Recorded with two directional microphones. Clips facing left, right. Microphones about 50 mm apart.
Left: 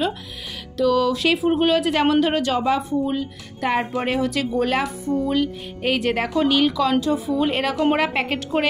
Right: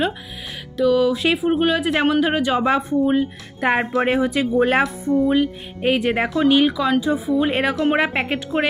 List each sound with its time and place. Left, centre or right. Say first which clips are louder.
0.7 s speech: right 2 dB; centre
2.6 s speech: right 3 dB; right; by 7.1 s centre
7.4 s speech: left 2 dB; right